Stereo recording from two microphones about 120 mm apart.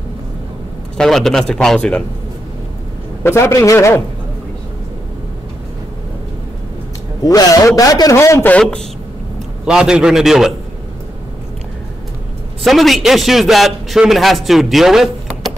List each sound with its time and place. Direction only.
0.9 s a man's voice: 5° left (ahead or behind)
3.3 s a man's voice: 20° left (ahead or behind)
7.2 s a man's voice: 30° left (ahead or behind)
8.5 s a man's voice: 10° left (ahead or behind)
9.7 s a man's voice: 5° right (ahead or behind)
12.6 s a man's voice: centre (ahead or behind)